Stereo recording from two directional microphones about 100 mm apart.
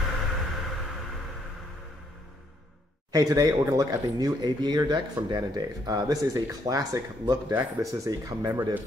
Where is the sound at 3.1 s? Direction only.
35° right (ahead or behind).